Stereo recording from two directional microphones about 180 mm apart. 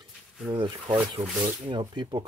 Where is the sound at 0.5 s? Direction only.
30° right (ahead or behind).